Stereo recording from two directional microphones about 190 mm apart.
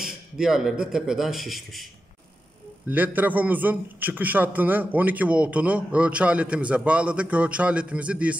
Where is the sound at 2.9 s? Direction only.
10° right (ahead or behind).